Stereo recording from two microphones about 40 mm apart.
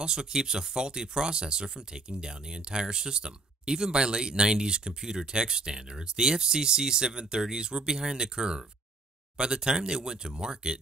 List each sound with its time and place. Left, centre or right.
0.0 s speech: centre